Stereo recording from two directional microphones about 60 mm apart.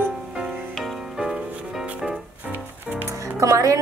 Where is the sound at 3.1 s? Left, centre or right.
Right.